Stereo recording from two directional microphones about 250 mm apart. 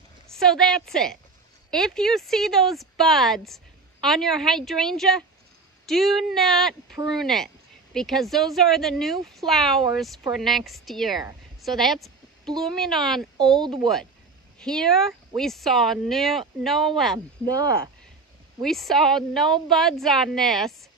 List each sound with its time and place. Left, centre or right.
0.3 s a woman's voice: centre
13.6 s a woman's voice: centre
14.6 s speech: centre
18.6 s speech: centre